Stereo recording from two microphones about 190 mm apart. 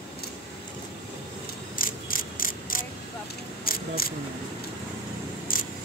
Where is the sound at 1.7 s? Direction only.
45° left (ahead or behind).